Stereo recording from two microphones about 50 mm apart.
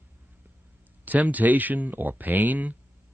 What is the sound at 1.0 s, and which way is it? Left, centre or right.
Speech, right.